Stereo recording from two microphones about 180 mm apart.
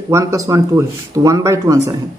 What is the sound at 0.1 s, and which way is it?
Speech, 20° right (ahead or behind).